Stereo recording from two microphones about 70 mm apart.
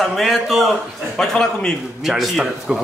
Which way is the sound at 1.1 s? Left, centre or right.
Centre.